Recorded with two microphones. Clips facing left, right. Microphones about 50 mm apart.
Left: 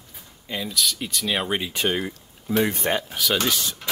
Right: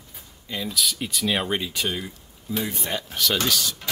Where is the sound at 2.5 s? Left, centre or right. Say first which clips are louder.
Left 7 dB; left.